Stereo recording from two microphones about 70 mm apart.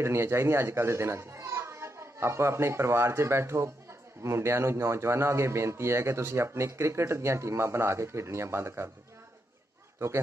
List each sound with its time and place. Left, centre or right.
0.0 s a man's voice: right
9.9 s speech: right